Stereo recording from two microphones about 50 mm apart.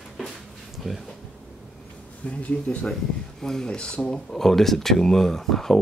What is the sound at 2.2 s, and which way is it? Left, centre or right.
Speech, left.